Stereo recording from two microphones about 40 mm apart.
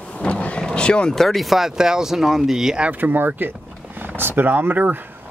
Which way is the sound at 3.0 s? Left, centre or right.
Right.